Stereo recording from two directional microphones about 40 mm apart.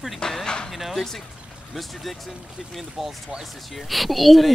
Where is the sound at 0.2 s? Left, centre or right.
Centre.